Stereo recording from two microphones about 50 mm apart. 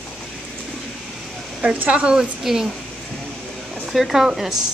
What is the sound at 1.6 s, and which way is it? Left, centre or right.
Speech, right.